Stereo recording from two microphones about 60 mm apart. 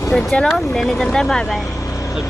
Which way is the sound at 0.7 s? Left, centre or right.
Centre.